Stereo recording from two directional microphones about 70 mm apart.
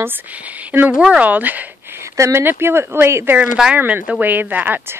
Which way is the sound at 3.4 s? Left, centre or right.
Centre.